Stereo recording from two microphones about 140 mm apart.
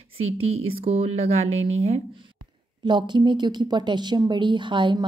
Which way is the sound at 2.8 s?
35° right (ahead or behind).